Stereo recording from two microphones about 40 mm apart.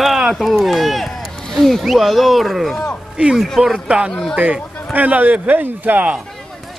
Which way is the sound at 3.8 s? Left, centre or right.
Right.